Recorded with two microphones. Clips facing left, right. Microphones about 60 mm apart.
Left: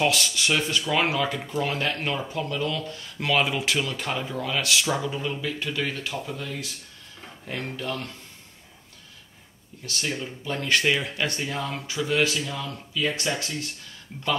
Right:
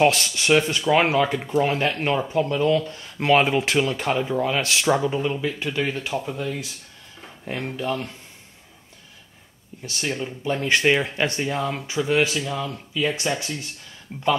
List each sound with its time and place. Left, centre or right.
0.0 s speech: right
9.8 s speech: right